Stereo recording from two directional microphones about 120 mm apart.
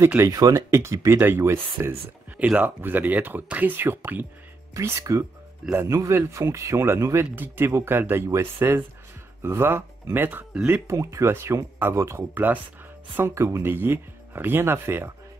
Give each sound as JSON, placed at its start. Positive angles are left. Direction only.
{"t": 0.2, "sound": "speech", "side_deg": -25}